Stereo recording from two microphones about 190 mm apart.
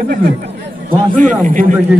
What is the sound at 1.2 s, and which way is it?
Speech, 40° right (ahead or behind).